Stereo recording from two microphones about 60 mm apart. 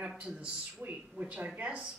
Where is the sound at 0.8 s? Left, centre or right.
Centre.